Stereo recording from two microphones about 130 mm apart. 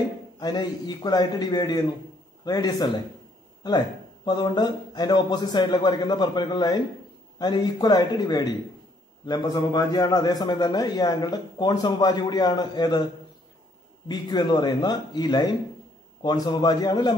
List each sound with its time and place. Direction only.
0.4 s a man's voice: 30° left (ahead or behind)
14.0 s a man's voice: 35° left (ahead or behind)